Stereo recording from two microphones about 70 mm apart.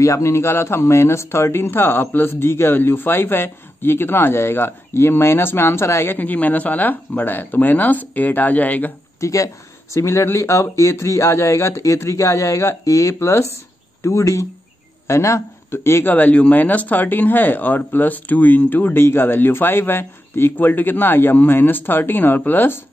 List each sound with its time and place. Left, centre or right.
0.0 s speech: left
6.1 s speech: left
9.2 s speech: left